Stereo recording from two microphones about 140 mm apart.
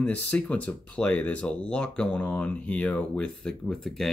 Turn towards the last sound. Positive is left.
turn(degrees=0)  # may be behind; listen again after turning